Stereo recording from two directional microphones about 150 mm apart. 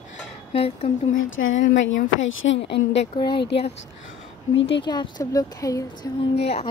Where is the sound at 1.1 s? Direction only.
55° left (ahead or behind).